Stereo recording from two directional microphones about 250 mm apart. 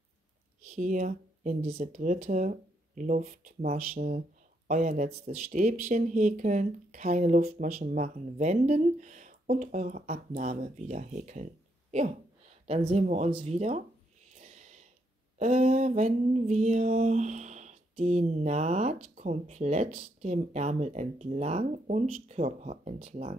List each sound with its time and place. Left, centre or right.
0.7 s speech: right
12.6 s speech: right
14.3 s snort: right
15.3 s speech: right